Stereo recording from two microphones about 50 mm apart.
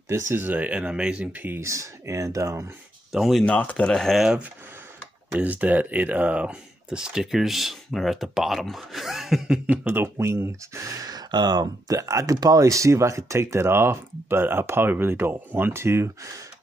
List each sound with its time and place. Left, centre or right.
0.3 s speech: right
0.6 s speech: right
1.3 s speech: right
1.6 s speech: right
3.1 s speech: centre
3.4 s speech: left
3.9 s speech: centre
5.3 s speech: right
7.0 s speech: centre
9.8 s speech: right
10.1 s speech: right
12.0 s speech: right
13.6 s speech: right